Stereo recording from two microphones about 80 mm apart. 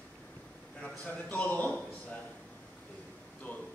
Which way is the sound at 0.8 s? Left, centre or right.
Centre.